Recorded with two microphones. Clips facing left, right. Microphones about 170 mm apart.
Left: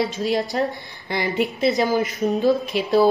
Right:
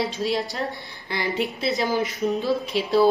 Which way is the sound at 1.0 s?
50° left (ahead or behind).